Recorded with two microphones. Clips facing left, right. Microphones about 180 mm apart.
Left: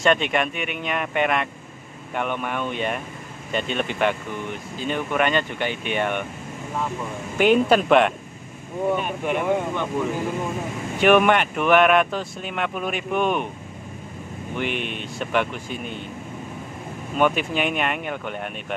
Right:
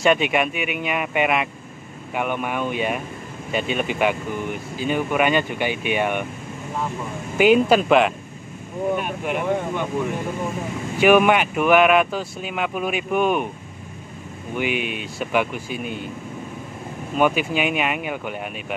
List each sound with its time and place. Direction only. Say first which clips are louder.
0.0 s speech: right 2 dB; 10° right (ahead or behind)
7.3 s speech: right 2 dB; 5° right (ahead or behind)
11.0 s speech: right 1 dB; 5° right (ahead or behind)
14.6 s speech: right 3 dB; 5° right (ahead or behind)
17.2 s speech: right 1 dB; 5° right (ahead or behind)